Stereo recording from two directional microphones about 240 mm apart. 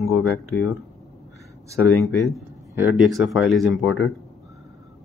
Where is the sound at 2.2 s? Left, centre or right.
Centre.